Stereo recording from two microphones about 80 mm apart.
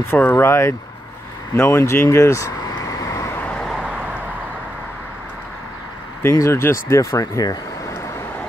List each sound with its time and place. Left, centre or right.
0.0 s speech: left
2.0 s vehicle: left
3.3 s vehicle: centre
3.8 s vehicle: centre
6.3 s speech: left